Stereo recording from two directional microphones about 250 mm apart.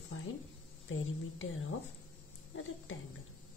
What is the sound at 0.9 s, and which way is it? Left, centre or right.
Speech, left.